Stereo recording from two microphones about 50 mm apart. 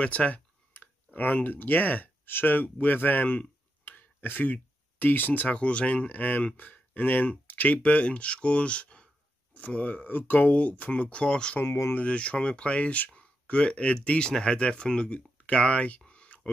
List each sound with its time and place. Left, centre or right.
0.0 s speech: left
0.7 s speech: left; by 11.5 s centre
11.6 s speech: left
11.9 s speech: left
13.2 s a sound: left
14.0 s speech: centre
16.1 s a sound: left